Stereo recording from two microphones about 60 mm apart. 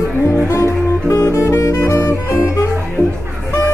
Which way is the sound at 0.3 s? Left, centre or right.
Left.